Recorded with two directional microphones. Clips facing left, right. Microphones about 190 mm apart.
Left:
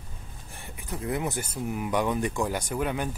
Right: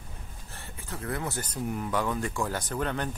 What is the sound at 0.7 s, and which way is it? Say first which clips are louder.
Speech: left 4 dB; 15° left (ahead or behind).